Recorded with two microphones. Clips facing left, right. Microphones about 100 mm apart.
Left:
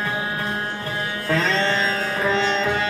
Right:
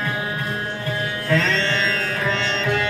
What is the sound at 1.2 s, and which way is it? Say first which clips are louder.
Music: even; 30° left (ahead or behind).